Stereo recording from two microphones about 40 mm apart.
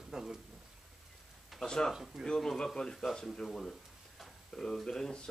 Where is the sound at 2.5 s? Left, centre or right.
Centre.